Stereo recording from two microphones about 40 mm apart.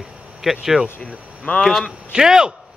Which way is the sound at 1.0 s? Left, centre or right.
Left.